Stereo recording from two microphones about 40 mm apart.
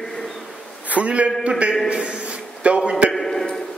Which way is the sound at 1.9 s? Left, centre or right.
Right.